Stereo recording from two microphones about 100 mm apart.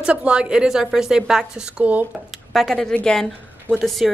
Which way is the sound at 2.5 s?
5° left (ahead or behind).